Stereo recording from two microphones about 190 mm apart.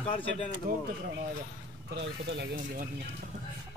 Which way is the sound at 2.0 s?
65° right (ahead or behind).